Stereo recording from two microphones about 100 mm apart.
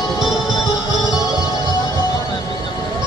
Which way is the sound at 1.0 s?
35° left (ahead or behind).